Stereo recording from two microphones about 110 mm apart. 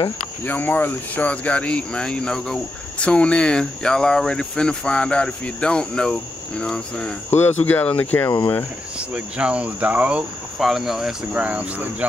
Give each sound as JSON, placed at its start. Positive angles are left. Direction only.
{"t": 0.5, "sound": "speech", "side_deg": 20}
{"t": 7.2, "sound": "speech", "side_deg": 20}
{"t": 8.9, "sound": "cricket", "side_deg": -10}